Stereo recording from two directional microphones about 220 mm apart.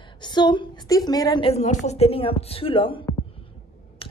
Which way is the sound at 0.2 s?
20° left (ahead or behind).